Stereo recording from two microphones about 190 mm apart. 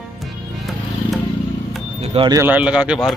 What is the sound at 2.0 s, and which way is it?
Speech, 30° right (ahead or behind).